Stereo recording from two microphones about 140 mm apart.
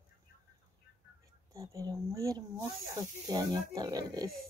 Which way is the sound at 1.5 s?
25° right (ahead or behind).